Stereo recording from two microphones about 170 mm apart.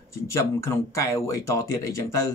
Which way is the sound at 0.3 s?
15° left (ahead or behind).